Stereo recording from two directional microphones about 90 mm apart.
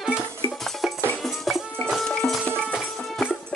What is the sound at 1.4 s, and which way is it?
Music, centre (ahead or behind).